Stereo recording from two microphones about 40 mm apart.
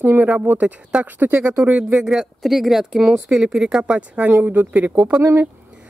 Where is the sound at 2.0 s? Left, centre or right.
Centre.